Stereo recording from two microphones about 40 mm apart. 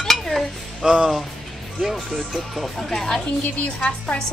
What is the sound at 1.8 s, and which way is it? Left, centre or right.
Speech, centre.